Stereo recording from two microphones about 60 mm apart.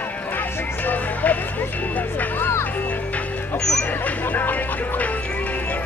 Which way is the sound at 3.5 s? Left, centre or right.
Centre.